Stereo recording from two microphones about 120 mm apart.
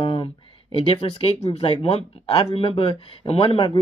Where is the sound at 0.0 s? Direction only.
45° left (ahead or behind).